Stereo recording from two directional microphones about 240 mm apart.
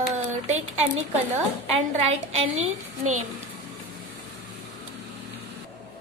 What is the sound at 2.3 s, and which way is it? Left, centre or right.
Speech, right.